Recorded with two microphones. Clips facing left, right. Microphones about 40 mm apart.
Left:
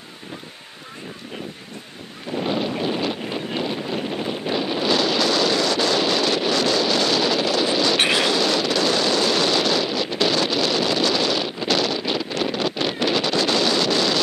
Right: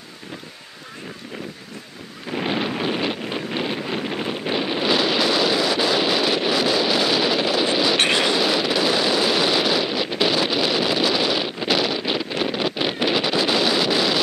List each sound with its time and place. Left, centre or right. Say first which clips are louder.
2.3 s wind noise: even; right
8.0 s vehicle: even; centre